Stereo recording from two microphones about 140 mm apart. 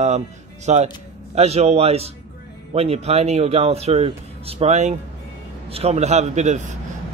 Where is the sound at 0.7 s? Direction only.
55° right (ahead or behind).